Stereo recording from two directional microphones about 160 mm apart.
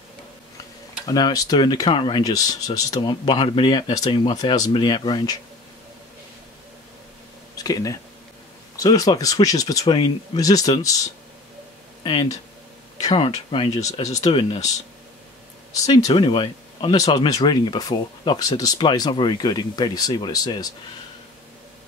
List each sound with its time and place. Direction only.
1.0 s speech: 25° left (ahead or behind)
7.5 s speech: 20° left (ahead or behind)
12.0 s speech: 30° left (ahead or behind)
14.0 s speech: 20° left (ahead or behind)
15.8 s speech: 20° left (ahead or behind)